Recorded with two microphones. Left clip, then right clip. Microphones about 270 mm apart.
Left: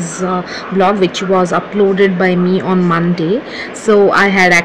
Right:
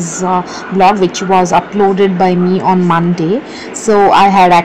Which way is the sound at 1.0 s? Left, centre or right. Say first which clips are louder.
Right 2 dB; centre.